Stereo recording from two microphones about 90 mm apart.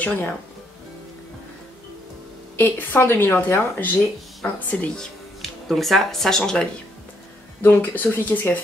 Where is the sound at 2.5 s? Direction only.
20° left (ahead or behind).